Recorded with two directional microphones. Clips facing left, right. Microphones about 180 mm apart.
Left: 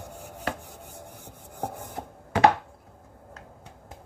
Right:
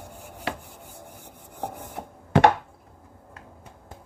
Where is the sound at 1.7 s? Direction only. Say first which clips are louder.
Even; 75° right (ahead or behind).